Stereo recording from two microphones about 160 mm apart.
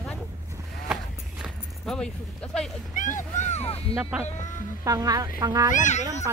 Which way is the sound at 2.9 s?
55° left (ahead or behind).